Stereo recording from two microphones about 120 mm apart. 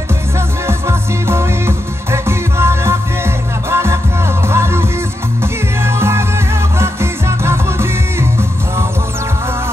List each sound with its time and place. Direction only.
0.7 s music: 20° right (ahead or behind)